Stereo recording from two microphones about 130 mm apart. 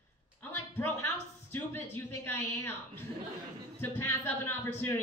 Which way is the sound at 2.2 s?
15° left (ahead or behind).